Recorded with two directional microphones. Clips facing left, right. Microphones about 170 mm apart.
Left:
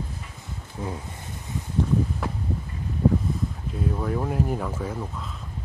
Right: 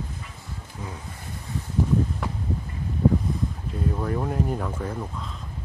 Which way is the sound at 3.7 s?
Centre (ahead or behind).